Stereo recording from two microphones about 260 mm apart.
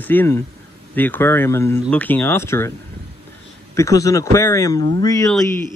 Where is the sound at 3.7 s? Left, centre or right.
Centre.